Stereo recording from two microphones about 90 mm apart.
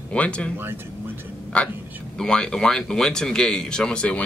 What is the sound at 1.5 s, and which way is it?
Speech, 10° left (ahead or behind).